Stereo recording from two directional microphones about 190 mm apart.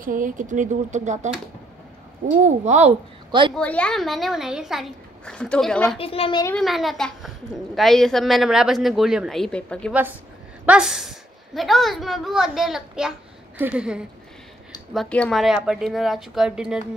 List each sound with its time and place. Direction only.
0.0 s speech: 45° right (ahead or behind)
2.4 s speech: 35° right (ahead or behind)
3.3 s a woman's voice: 25° right (ahead or behind)
3.5 s a child's voice: 5° left (ahead or behind)
5.9 s a woman's voice: 30° left (ahead or behind)
6.6 s a child's voice: centre (ahead or behind)
10.6 s a child's voice: 5° right (ahead or behind)
15.0 s a child's voice: 5° left (ahead or behind)